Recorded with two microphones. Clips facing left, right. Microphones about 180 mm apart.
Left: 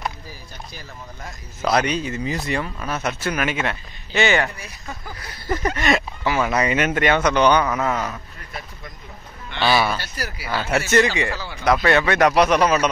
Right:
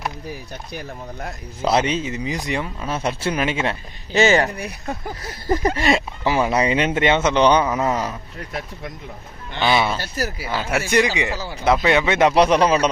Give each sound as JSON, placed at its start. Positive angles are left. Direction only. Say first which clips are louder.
{"t": 0.3, "sound": "speech", "louder": "right 7 dB", "side_deg": -60}
{"t": 1.6, "sound": "speech", "louder": "right 1 dB", "side_deg": -25}
{"t": 4.6, "sound": "speech", "louder": "right 8 dB", "side_deg": -60}
{"t": 5.2, "sound": "speech", "louder": "right 3 dB", "side_deg": -35}
{"t": 9.6, "sound": "speech", "louder": "even", "side_deg": -20}
{"t": 10.2, "sound": "speech", "louder": "right 6 dB", "side_deg": -45}
{"t": 10.5, "sound": "speech", "louder": "left 2 dB", "side_deg": -15}